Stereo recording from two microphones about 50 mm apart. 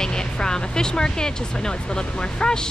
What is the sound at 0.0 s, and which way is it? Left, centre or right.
Speech, centre.